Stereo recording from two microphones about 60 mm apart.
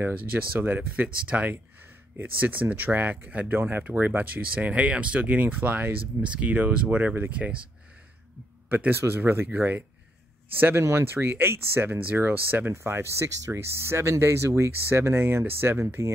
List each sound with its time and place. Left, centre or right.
0.0 s speech: right
8.6 s speech: right
9.5 s speech: right
12.7 s speech: right